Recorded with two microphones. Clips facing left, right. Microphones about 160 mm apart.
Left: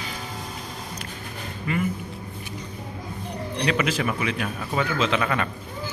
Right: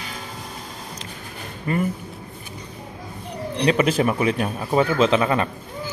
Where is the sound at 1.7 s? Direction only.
40° right (ahead or behind).